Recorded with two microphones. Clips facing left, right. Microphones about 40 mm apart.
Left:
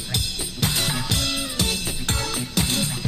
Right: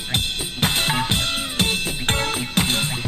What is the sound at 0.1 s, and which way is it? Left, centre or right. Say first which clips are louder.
Drum kit: right 4 dB; right.